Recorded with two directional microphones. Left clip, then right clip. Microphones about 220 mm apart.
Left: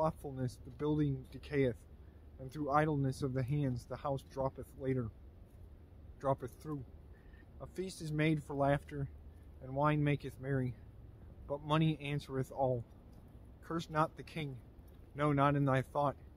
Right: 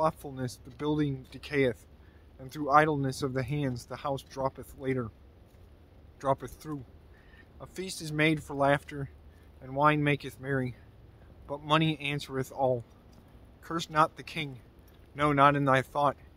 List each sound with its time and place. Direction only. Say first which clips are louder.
0.0 s speech: right 7 dB; 5° right (ahead or behind)
6.1 s speech: right 6 dB; 5° right (ahead or behind)